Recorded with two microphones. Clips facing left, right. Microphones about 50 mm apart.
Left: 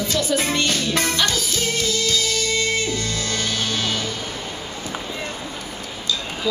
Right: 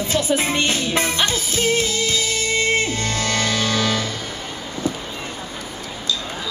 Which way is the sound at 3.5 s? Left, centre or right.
Right.